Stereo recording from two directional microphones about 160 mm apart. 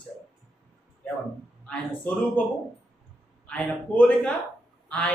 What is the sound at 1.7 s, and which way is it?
Speech, 10° left (ahead or behind).